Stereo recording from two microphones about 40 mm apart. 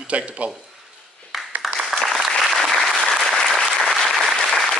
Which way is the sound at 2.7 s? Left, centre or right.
Centre.